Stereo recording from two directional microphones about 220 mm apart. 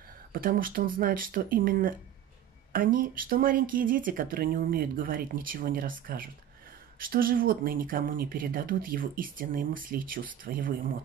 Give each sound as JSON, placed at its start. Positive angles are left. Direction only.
{"t": 0.3, "sound": "speech", "side_deg": -40}